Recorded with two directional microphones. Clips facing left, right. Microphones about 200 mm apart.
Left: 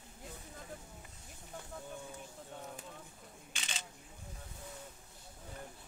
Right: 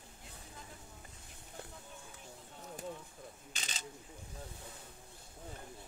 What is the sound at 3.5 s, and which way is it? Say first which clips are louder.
Camera: left 4 dB; 40° right (ahead or behind).